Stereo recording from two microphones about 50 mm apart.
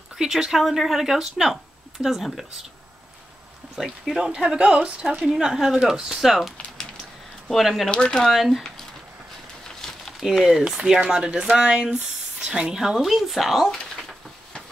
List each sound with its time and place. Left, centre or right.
0.1 s speech: centre
4.1 s speech: centre
5.2 s speech: centre
7.9 s speech: centre
8.2 s speech: centre
9.8 s a sound: centre
10.2 s speech: centre
13.0 s speech: centre